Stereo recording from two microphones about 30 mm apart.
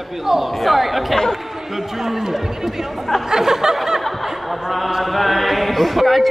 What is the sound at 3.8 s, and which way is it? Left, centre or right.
Snicker, centre.